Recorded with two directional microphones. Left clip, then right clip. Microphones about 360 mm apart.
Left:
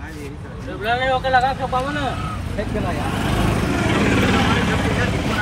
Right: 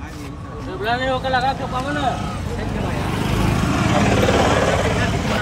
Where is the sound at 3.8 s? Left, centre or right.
Right.